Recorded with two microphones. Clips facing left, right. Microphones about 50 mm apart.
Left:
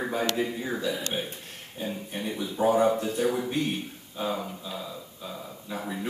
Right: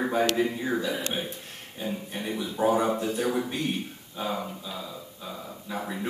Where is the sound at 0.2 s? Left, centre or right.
Centre.